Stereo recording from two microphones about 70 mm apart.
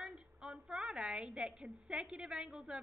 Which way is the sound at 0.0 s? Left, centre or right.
Centre.